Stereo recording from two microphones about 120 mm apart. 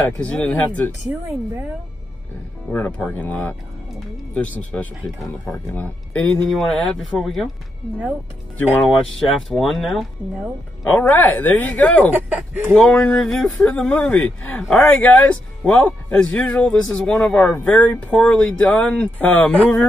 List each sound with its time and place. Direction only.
0.2 s speech: 10° left (ahead or behind)
2.7 s speech: 15° left (ahead or behind)
6.4 s speech: centre (ahead or behind)
8.8 s speech: centre (ahead or behind)
10.9 s speech: 15° left (ahead or behind)
12.2 s speech: 20° right (ahead or behind)
12.7 s speech: 10° left (ahead or behind)